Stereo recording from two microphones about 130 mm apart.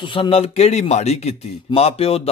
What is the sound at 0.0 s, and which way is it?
Speech, 40° left (ahead or behind).